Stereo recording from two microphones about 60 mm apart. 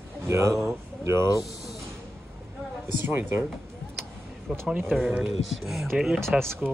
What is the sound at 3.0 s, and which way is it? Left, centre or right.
Speech, right.